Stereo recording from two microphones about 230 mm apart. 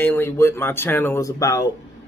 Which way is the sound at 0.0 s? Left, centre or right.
Centre.